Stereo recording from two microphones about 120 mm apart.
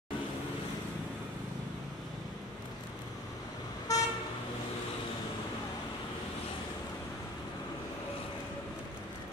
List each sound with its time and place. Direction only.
3.9 s vehicle: 30° left (ahead or behind)